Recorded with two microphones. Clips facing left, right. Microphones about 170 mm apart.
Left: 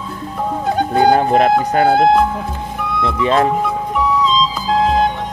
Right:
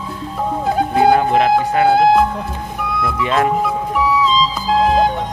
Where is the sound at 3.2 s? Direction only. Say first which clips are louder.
Left 3 dB; 30° left (ahead or behind).